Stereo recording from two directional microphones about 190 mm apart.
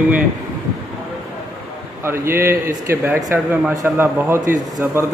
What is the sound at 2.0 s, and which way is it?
Speech, 10° right (ahead or behind).